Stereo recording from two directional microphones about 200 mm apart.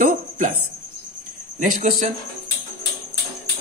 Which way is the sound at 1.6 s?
45° right (ahead or behind).